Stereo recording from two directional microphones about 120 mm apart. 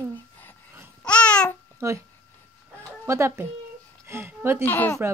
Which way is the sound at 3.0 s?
25° right (ahead or behind).